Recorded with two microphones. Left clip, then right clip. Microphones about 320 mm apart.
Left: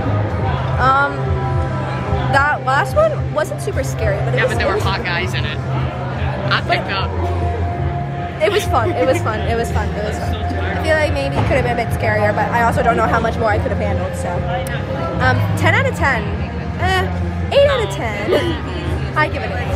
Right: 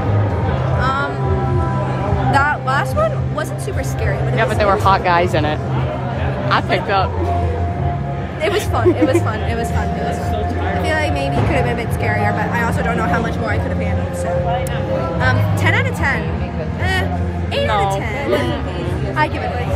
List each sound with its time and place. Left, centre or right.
0.7 s music: centre
2.3 s music: centre
4.4 s speech: centre
6.5 s speech: centre
8.4 s speech: centre
10.9 s speech: centre
15.1 s speech: centre
17.6 s speech: centre